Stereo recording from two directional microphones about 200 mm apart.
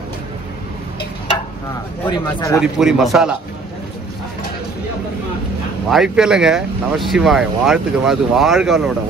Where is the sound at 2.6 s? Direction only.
Centre (ahead or behind).